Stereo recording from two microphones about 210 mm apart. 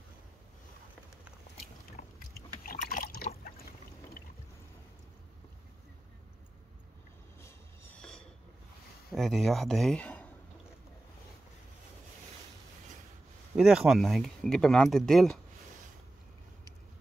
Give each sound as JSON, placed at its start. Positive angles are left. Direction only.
{"t": 2.1, "sound": "boat", "side_deg": 40}
{"t": 7.4, "sound": "a sound", "side_deg": 10}
{"t": 9.1, "sound": "speech", "side_deg": 0}
{"t": 13.6, "sound": "speech", "side_deg": -5}